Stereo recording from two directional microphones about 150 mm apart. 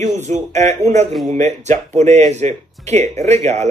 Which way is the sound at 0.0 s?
50° right (ahead or behind).